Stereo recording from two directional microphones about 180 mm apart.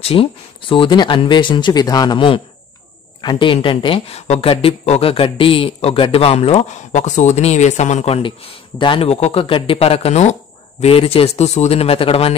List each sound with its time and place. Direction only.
0.0 s speech: 30° left (ahead or behind)